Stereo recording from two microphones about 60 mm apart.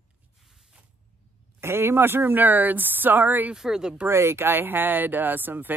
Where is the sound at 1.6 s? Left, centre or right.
Right.